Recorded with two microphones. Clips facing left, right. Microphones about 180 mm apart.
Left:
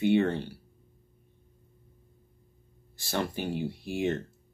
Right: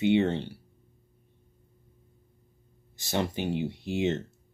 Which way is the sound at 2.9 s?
20° right (ahead or behind).